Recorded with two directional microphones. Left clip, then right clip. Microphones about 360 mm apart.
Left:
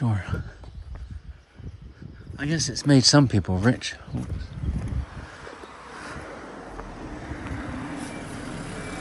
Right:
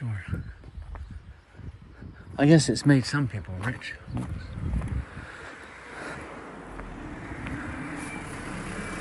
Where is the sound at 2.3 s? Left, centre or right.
Centre.